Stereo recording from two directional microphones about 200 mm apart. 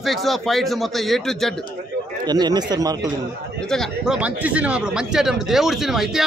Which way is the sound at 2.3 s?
20° right (ahead or behind).